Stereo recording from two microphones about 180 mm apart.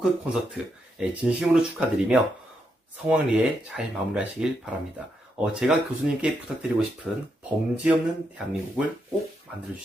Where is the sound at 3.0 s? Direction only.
5° right (ahead or behind).